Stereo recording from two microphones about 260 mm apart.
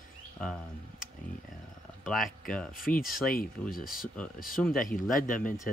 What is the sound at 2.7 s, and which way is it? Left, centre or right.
Speech, left.